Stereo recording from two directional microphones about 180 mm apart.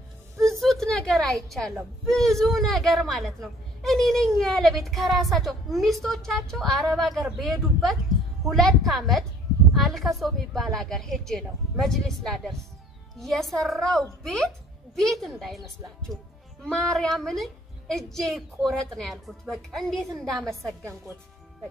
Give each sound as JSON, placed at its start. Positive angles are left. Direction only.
{"t": 0.6, "sound": "a woman's voice", "side_deg": 5}